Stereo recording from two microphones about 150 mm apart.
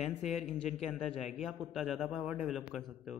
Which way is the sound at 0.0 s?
Centre (ahead or behind).